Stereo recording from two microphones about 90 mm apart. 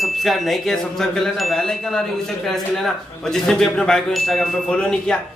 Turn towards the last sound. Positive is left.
turn(degrees=5)  # may be behind; listen again after turning